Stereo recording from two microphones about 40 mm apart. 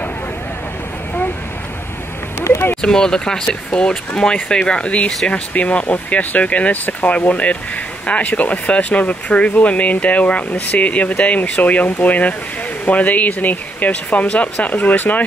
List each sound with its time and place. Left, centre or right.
2.8 s speech: centre; by 15.2 s left